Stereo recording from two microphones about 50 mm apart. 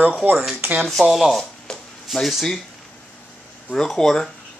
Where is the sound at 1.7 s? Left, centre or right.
Centre.